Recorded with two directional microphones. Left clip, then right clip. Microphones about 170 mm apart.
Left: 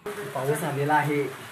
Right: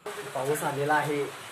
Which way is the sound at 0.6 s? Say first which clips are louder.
Left 3 dB; 15° right (ahead or behind).